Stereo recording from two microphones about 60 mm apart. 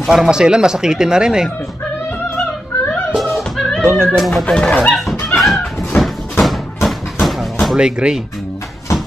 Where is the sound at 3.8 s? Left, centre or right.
Right.